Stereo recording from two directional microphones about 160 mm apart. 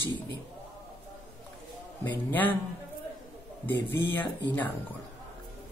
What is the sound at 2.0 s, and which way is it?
Speech, 10° left (ahead or behind).